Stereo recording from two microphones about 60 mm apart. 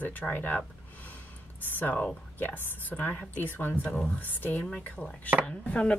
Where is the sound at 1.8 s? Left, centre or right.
Left.